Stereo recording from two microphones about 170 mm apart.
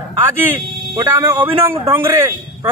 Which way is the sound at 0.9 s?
25° right (ahead or behind).